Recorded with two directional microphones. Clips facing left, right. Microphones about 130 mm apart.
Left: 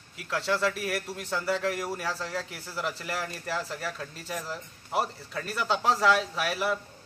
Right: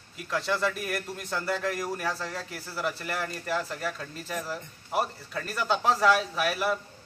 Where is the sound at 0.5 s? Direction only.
Centre (ahead or behind).